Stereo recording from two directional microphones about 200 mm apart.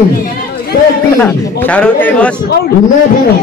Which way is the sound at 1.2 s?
5° left (ahead or behind).